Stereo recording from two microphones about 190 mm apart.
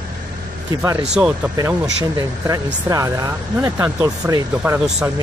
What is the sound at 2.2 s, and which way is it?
Speech, 20° right (ahead or behind).